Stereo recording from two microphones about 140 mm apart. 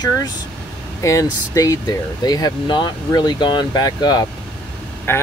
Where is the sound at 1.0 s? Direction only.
25° left (ahead or behind).